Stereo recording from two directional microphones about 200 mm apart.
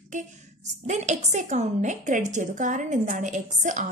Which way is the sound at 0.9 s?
35° right (ahead or behind).